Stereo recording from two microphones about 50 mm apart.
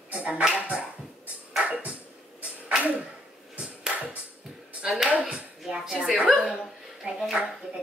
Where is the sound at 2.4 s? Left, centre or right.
Right.